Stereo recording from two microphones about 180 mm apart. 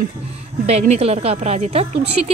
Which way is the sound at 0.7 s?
35° right (ahead or behind).